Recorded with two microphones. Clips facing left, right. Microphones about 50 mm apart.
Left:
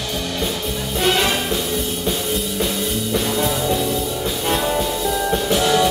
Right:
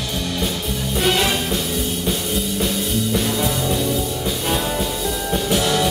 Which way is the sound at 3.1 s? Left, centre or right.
Centre.